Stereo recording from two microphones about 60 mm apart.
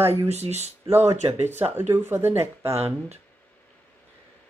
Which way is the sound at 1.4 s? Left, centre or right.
Right.